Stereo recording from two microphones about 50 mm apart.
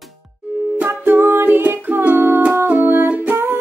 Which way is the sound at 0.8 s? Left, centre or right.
Right.